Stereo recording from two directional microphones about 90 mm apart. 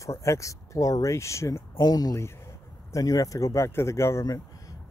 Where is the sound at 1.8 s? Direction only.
45° left (ahead or behind).